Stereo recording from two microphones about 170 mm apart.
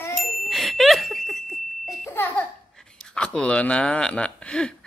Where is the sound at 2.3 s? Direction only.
5° left (ahead or behind).